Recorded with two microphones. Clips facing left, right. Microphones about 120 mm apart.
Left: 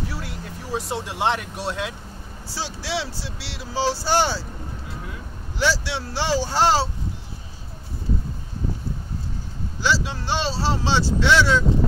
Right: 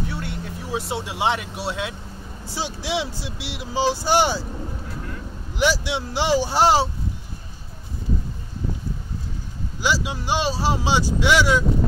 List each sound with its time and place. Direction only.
0.0 s speech: centre (ahead or behind)
2.5 s speech: 20° right (ahead or behind)
5.6 s speech: 15° right (ahead or behind)
9.8 s speech: 15° right (ahead or behind)